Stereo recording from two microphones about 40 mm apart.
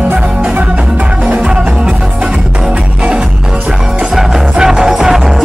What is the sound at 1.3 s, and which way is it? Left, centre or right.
Music, right.